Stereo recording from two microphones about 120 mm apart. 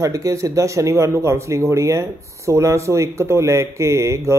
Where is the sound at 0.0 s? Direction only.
30° right (ahead or behind).